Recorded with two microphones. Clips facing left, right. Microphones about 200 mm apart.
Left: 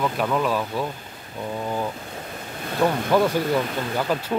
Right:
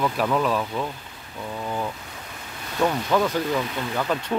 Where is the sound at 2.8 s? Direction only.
15° left (ahead or behind).